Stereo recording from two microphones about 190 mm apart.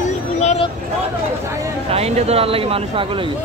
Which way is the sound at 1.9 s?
30° right (ahead or behind).